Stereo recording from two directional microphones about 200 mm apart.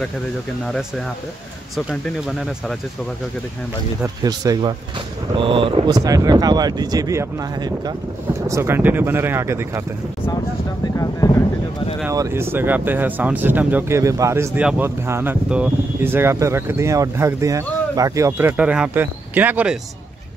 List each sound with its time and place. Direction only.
0.7 s speech: centre (ahead or behind)
4.0 s speech: 20° right (ahead or behind)
11.0 s speech: 15° left (ahead or behind)
12.1 s speech: 15° right (ahead or behind)